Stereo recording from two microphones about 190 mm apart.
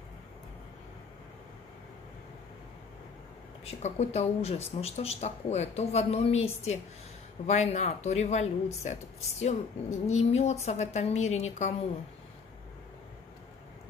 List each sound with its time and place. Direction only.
3.6 s speech: 35° left (ahead or behind)